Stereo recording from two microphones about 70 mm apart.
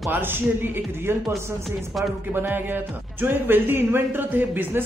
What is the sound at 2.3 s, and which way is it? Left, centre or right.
Speech, right.